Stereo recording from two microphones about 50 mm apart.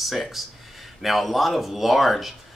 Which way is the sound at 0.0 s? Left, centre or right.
Centre.